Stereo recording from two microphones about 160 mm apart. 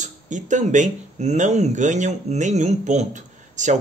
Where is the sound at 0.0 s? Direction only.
50° right (ahead or behind).